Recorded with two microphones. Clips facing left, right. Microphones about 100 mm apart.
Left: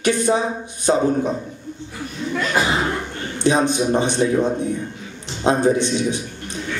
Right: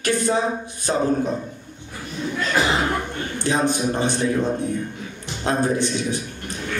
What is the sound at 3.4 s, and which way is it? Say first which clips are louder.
A man's voice: left 4 dB; 20° left (ahead or behind).